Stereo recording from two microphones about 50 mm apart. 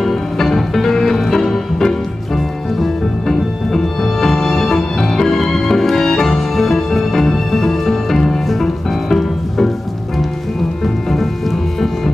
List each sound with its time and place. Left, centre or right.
0.0 s music: centre